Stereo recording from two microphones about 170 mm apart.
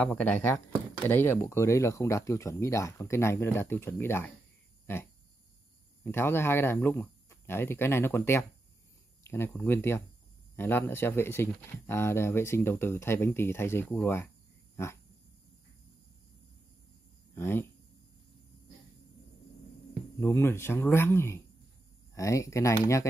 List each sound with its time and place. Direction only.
0.0 s speech: 10° left (ahead or behind)
6.0 s speech: 15° left (ahead or behind)
17.4 s speech: 15° left (ahead or behind)
19.9 s speech: 15° left (ahead or behind)